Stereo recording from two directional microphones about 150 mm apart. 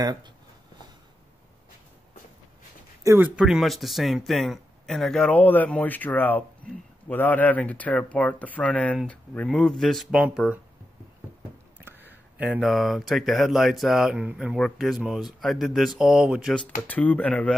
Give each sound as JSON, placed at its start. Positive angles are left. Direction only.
{"t": 0.0, "sound": "speech", "side_deg": -25}
{"t": 3.0, "sound": "a sound", "side_deg": -20}
{"t": 3.3, "sound": "speech", "side_deg": -5}
{"t": 12.1, "sound": "speech", "side_deg": -5}
{"t": 16.8, "sound": "speech", "side_deg": 10}